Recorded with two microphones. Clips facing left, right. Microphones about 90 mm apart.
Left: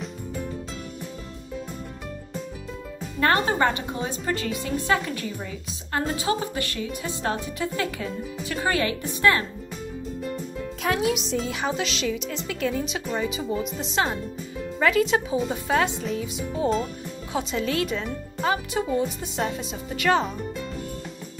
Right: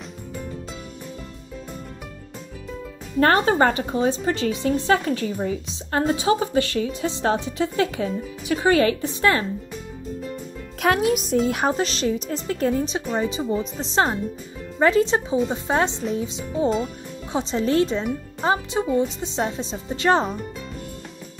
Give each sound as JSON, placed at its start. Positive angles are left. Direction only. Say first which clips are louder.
{"t": 3.3, "sound": "speech", "louder": "right 3 dB", "side_deg": -35}
{"t": 10.8, "sound": "music", "louder": "right 5 dB", "side_deg": -55}
{"t": 11.4, "sound": "speech", "louder": "right 5 dB", "side_deg": -50}